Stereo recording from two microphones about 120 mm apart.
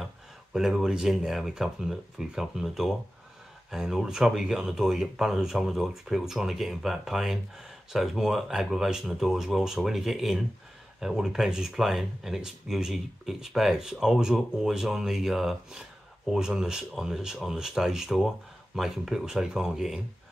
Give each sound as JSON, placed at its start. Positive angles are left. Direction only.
{"t": 0.0, "sound": "speech", "side_deg": 0}